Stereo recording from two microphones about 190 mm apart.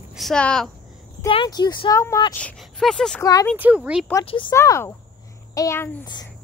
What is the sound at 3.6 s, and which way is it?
Speech, 5° right (ahead or behind).